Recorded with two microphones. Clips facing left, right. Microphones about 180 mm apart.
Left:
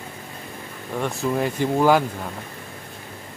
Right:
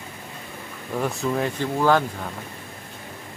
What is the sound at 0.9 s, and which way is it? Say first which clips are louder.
Speech: left 1 dB; centre (ahead or behind).